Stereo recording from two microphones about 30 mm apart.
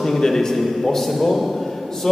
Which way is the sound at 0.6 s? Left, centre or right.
Centre.